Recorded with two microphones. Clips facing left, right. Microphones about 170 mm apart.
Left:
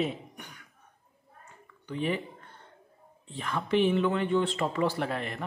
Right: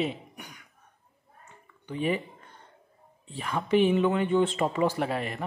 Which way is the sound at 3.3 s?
10° right (ahead or behind).